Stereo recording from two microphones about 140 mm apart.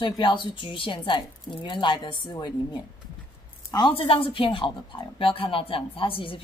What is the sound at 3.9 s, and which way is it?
Speech, 40° left (ahead or behind).